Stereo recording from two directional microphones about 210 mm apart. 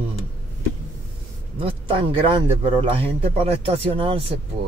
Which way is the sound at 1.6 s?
25° right (ahead or behind).